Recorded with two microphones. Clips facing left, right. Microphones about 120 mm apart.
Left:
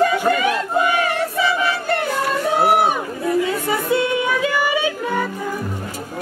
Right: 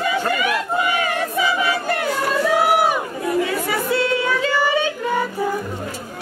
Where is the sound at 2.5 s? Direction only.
30° left (ahead or behind).